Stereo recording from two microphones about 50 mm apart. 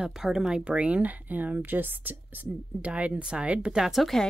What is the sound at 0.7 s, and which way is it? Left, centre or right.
Speech, right.